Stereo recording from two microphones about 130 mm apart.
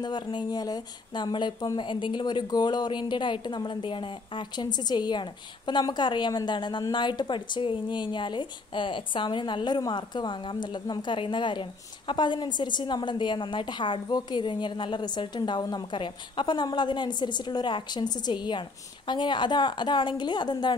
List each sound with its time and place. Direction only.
0.0 s speech: 35° left (ahead or behind)